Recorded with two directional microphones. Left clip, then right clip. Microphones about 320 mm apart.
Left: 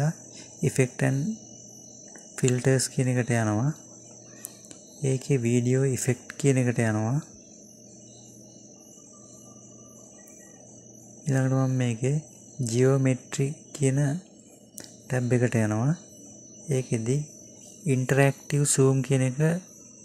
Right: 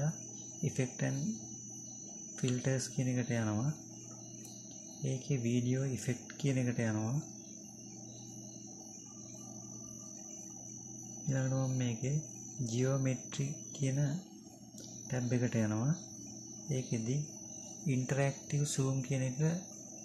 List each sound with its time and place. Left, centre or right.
0.6 s speech: left
2.3 s speech: left
5.0 s speech: left
11.2 s speech: left